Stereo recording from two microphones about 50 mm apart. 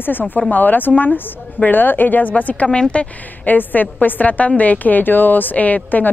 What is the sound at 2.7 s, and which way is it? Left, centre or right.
Speech, centre.